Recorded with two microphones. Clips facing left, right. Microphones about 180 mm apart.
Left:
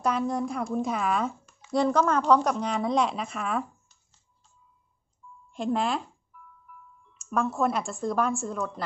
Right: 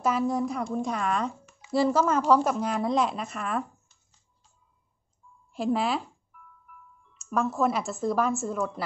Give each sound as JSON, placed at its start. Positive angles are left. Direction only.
{"t": 0.0, "sound": "speech", "side_deg": 0}
{"t": 5.5, "sound": "speech", "side_deg": -5}
{"t": 7.2, "sound": "speech", "side_deg": 0}